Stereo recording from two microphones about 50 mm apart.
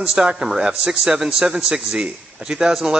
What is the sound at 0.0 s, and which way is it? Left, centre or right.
A man's voice, centre.